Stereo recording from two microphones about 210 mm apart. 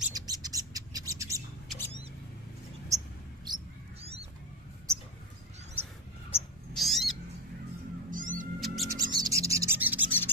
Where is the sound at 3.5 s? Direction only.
30° right (ahead or behind).